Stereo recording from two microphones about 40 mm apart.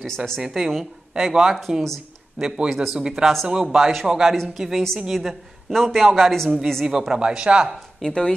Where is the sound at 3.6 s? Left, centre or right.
Centre.